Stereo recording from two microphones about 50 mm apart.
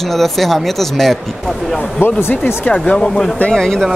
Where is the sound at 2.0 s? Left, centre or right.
Left.